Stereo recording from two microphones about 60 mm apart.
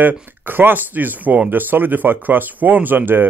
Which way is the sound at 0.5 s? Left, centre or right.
Right.